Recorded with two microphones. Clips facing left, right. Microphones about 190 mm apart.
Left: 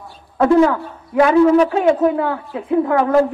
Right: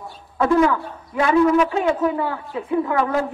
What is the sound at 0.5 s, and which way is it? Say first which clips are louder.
A woman's voice: left 4 dB; 35° left (ahead or behind).